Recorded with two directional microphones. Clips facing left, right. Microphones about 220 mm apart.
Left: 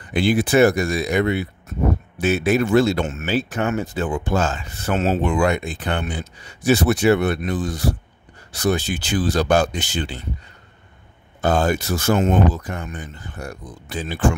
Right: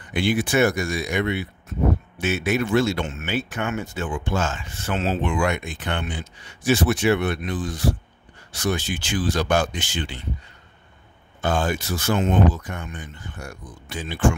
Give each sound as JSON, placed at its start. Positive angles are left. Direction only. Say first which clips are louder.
{"t": 0.1, "sound": "speech", "louder": "left 4 dB", "side_deg": 35}
{"t": 8.5, "sound": "speech", "louder": "left 4 dB", "side_deg": 35}
{"t": 11.4, "sound": "speech", "louder": "left 4 dB", "side_deg": 40}